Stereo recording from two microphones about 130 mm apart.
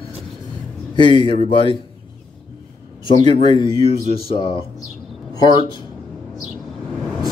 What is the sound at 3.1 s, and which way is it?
Speech, 40° left (ahead or behind).